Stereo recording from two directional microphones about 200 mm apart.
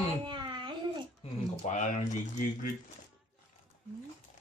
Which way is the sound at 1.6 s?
35° left (ahead or behind).